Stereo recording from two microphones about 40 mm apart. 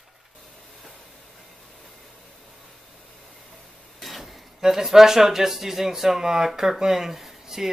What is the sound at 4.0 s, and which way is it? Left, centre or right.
Speech, centre.